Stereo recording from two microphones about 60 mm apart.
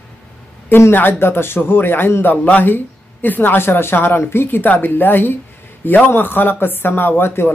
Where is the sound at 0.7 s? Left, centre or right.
Left.